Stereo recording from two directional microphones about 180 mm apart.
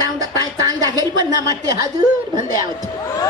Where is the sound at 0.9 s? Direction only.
20° right (ahead or behind).